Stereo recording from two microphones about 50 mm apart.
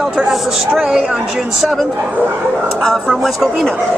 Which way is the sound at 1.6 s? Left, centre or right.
Centre.